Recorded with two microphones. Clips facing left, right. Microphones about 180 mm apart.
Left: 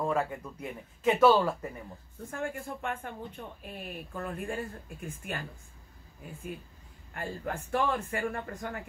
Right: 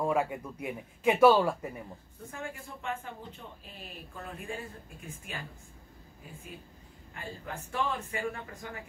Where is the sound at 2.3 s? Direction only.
55° left (ahead or behind).